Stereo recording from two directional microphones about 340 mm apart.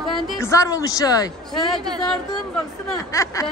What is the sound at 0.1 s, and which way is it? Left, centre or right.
Speech, centre.